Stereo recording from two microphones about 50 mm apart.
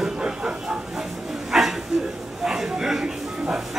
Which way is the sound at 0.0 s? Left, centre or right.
Centre.